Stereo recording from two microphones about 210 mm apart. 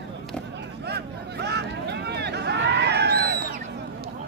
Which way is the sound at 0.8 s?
50° right (ahead or behind).